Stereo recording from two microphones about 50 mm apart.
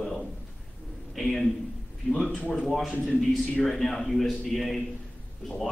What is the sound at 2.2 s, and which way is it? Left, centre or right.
Speech, left.